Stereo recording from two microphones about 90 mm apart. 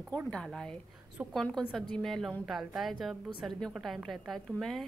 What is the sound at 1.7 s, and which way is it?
A woman's voice, 5° left (ahead or behind).